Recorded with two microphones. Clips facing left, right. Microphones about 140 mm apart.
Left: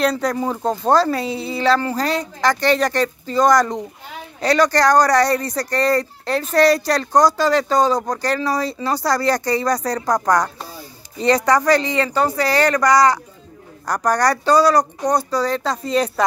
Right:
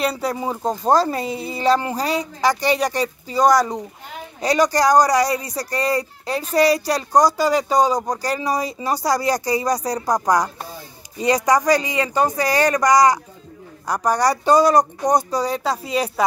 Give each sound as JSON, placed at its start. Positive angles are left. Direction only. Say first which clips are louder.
{"t": 0.0, "sound": "speech", "louder": "left 3 dB", "side_deg": -10}
{"t": 1.2, "sound": "a woman's voice", "louder": "left 2 dB", "side_deg": -45}
{"t": 1.7, "sound": "speech", "louder": "even", "side_deg": -15}